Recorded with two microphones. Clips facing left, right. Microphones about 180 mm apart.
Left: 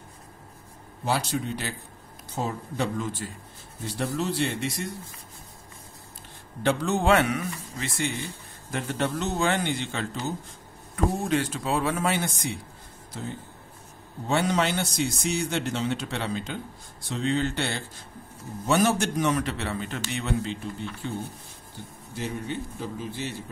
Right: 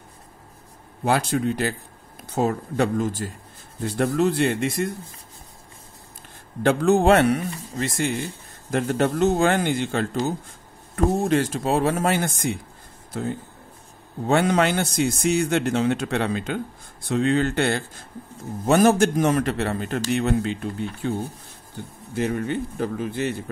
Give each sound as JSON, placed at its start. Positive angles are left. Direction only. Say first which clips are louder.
{"t": 1.0, "sound": "a man's voice", "louder": "right 6 dB", "side_deg": -55}
{"t": 6.6, "sound": "a man's voice", "louder": "right 7 dB", "side_deg": -50}
{"t": 11.2, "sound": "a man's voice", "louder": "right 5 dB", "side_deg": -45}
{"t": 22.1, "sound": "a man's voice", "louder": "right 8 dB", "side_deg": -60}